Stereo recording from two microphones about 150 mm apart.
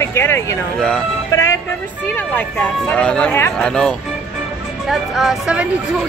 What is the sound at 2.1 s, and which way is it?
Speech, 10° left (ahead or behind).